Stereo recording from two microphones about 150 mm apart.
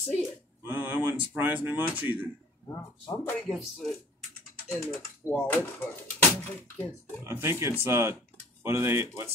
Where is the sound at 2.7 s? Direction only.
15° left (ahead or behind).